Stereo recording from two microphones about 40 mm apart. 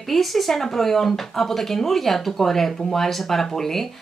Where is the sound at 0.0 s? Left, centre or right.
Centre.